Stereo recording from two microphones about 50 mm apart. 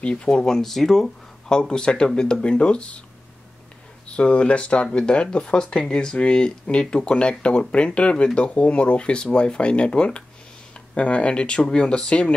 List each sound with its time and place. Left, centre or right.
0.0 s speech: centre
0.6 s speech: centre; by 3.0 s left
4.1 s speech: left